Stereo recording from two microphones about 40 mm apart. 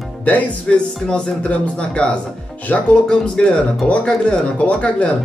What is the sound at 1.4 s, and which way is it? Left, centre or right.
Speech, left.